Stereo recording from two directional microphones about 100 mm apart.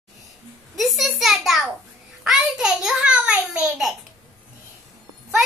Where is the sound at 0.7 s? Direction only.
Centre (ahead or behind).